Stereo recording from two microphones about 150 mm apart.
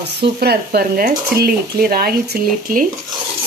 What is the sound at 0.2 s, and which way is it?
Speech, 90° right.